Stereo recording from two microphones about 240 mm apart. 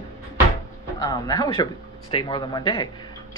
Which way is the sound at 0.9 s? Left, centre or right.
Centre.